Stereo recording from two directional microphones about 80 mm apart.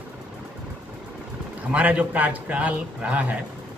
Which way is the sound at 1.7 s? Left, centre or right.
Centre.